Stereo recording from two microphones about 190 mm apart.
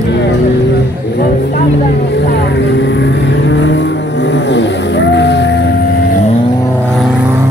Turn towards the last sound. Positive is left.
turn(degrees=65)  # may be behind; listen again after turning